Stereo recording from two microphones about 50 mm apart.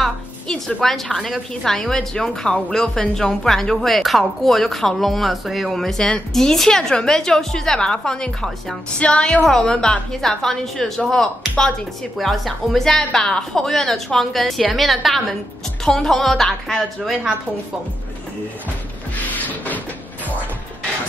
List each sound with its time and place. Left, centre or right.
0.5 s a woman's voice: centre
1.1 s speech: centre
1.5 s a woman's voice: centre
9.4 s a woman's voice: centre
19.1 s a sound: left